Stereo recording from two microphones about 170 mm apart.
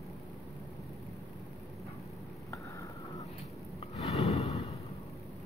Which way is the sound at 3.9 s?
40° left (ahead or behind).